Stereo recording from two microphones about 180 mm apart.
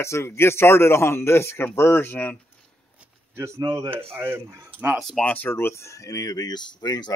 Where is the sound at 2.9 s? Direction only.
10° right (ahead or behind).